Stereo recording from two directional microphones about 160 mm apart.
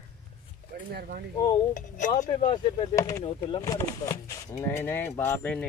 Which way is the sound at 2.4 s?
40° left (ahead or behind).